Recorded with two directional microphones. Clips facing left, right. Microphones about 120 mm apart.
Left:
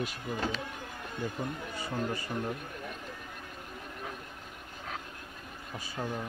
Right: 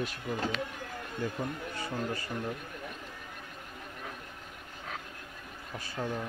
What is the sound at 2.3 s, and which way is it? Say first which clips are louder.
Speech: left 2 dB; 20° left (ahead or behind).